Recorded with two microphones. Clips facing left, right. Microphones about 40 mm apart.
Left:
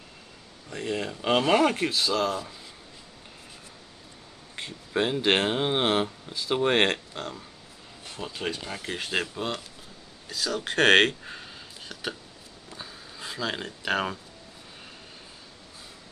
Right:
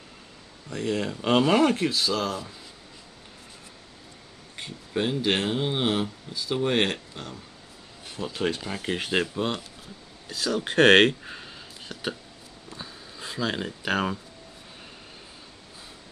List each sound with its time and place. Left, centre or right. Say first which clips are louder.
0.7 s speech: right 3 dB; centre
4.9 s speech: left 1 dB; left
6.5 s speech: left 2 dB; left
8.6 s speech: right 4 dB; centre
8.9 s speech: right 3 dB; centre
9.2 s speech: right 3 dB; centre
12.6 s a sound: right 1 dB; centre